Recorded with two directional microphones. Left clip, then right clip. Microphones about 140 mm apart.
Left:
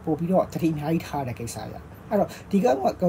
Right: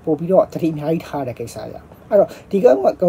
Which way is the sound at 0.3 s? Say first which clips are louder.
Right 8 dB; 15° right (ahead or behind).